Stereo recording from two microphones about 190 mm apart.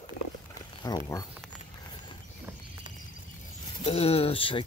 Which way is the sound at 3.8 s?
30° left (ahead or behind).